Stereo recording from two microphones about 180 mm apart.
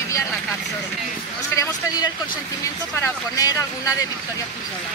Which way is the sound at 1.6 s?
20° left (ahead or behind).